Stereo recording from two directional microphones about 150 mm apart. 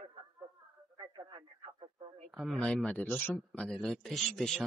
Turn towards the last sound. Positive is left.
turn(degrees=0)  # may be behind; listen again after turning